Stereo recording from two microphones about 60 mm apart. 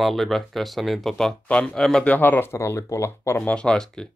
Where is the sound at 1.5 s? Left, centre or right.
Centre.